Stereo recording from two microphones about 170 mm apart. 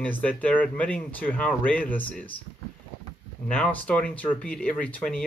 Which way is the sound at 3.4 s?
5° left (ahead or behind).